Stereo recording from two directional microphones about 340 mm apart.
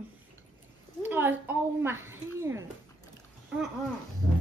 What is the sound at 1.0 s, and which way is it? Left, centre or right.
A woman's voice, centre.